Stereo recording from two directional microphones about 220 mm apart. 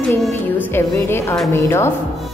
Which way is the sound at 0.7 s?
10° left (ahead or behind).